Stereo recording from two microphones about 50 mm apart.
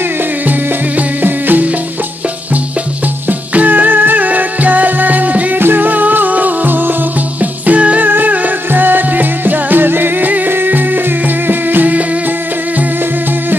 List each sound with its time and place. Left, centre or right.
0.5 s music: right
3.3 s music: right
5.6 s music: right
7.3 s music: right